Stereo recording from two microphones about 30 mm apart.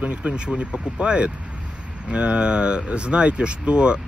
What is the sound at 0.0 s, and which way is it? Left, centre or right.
Speech, right.